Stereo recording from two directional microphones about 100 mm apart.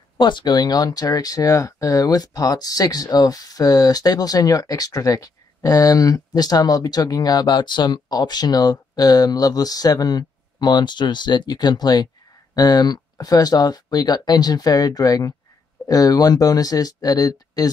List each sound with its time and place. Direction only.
0.2 s speech: 50° left (ahead or behind)